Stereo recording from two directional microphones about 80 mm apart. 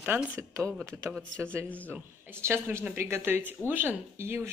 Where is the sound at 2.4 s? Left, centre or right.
Right.